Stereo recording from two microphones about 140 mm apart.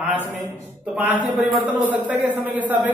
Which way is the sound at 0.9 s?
10° right (ahead or behind).